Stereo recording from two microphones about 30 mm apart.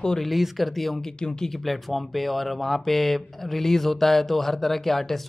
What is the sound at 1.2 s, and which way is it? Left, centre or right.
Speech, left.